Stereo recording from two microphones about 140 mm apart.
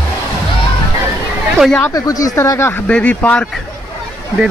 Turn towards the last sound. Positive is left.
turn(degrees=10)  # may be behind; listen again after turning